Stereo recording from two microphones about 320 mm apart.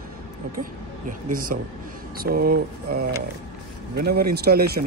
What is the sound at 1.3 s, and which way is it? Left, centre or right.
Speech, right.